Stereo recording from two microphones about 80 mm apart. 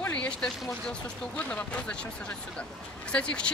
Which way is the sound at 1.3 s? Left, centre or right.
Centre.